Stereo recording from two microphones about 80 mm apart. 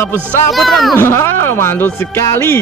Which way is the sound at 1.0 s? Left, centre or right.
Left.